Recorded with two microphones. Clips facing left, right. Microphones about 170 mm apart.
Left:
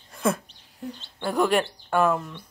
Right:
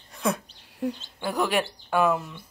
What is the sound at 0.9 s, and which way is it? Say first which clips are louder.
Speech: left 3 dB; 5° right (ahead or behind).